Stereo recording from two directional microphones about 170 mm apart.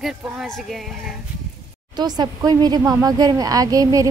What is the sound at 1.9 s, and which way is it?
Speech, 25° right (ahead or behind).